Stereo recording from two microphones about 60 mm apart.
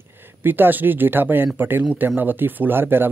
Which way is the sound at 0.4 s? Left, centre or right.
Right.